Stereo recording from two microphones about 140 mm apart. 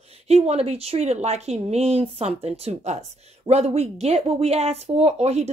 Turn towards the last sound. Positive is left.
turn(degrees=-50)  # may be behind; listen again after turning